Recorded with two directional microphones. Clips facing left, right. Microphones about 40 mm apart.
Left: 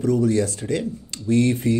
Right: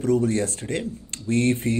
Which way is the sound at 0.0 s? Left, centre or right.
Right.